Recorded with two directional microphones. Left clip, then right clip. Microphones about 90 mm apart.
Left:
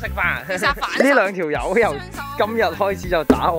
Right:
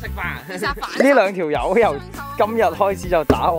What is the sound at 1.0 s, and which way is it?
Speech, 40° right (ahead or behind).